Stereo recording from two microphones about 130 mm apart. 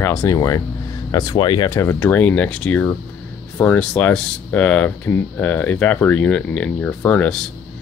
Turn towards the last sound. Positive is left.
turn(degrees=10)  # may be behind; listen again after turning